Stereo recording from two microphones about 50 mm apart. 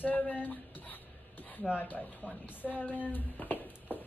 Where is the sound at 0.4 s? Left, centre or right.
Left.